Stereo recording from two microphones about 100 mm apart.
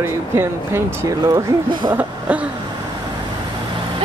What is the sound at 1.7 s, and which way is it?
Speech, 50° right (ahead or behind).